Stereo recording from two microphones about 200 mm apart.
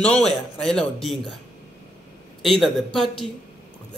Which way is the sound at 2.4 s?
Centre (ahead or behind).